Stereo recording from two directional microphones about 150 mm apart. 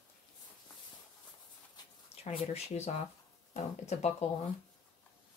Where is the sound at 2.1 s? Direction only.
45° left (ahead or behind).